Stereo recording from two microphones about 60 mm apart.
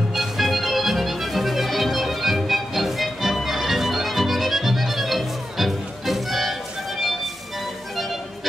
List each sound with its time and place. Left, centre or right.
0.1 s music: centre